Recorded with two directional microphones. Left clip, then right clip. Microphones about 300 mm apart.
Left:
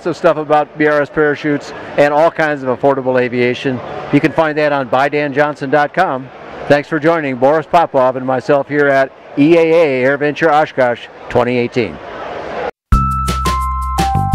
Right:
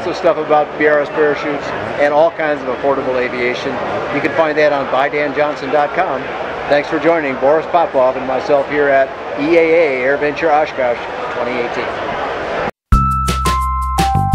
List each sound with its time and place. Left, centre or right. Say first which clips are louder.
0.0 s speech: left 1 dB; left
12.9 s music: right 1 dB; centre